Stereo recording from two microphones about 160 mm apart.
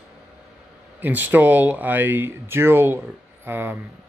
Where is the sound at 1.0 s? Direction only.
10° right (ahead or behind).